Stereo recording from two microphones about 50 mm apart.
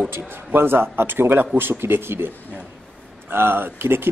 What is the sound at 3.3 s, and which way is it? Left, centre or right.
Speech, right.